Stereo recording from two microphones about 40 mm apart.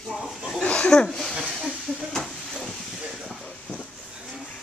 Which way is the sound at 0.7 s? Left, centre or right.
Left.